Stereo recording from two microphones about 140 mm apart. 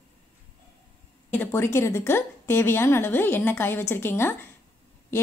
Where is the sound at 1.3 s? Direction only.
20° left (ahead or behind).